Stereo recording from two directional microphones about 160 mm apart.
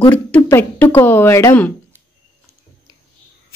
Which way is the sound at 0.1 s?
10° left (ahead or behind).